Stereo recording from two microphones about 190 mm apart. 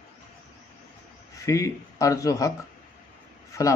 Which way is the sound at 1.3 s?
15° left (ahead or behind).